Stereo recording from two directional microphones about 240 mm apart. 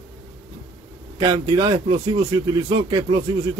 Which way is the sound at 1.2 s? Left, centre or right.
Centre.